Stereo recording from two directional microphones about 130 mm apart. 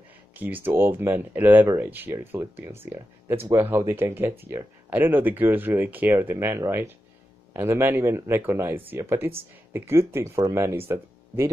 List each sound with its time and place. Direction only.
0.4 s speech: 15° right (ahead or behind)